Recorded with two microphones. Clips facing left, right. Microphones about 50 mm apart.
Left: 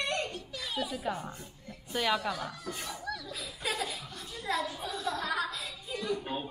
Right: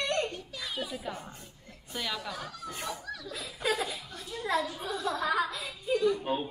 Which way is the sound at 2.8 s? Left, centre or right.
Right.